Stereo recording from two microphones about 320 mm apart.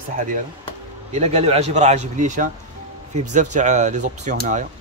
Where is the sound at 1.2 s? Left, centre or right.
Right.